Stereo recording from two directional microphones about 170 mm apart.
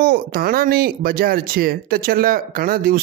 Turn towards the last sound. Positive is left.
turn(degrees=-55)  # may be behind; listen again after turning